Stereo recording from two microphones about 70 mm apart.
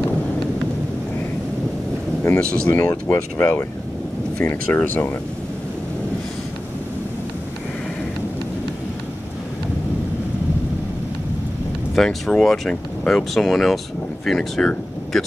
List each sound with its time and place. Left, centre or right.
2.2 s speech: left
4.7 s speech: left
11.9 s speech: centre
15.1 s a sound: centre